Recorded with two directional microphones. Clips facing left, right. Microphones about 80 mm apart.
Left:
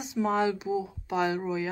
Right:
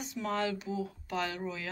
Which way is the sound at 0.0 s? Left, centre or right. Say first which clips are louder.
Left 7 dB; centre.